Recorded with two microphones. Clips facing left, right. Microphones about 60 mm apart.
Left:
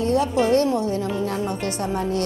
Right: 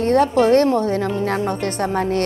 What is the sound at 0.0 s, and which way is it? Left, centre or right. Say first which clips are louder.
A woman's voice: right 5 dB; right.